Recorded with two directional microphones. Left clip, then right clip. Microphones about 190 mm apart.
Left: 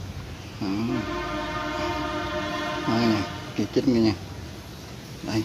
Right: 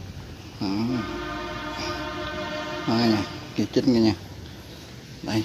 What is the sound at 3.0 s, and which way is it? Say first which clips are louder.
Music: right 1 dB; 30° right (ahead or behind).